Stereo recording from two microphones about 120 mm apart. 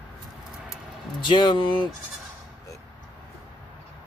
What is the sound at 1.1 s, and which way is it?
Speech, 40° left (ahead or behind).